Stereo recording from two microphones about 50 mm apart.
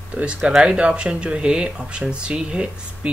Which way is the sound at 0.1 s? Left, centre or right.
Right.